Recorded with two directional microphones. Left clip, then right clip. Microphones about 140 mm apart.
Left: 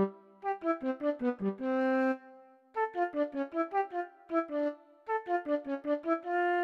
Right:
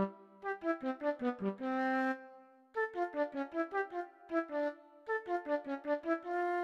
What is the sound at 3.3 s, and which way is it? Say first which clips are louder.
Music: left 5 dB; 25° right (ahead or behind).